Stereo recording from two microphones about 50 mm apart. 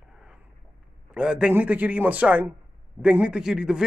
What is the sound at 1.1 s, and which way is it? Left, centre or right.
Speech, right.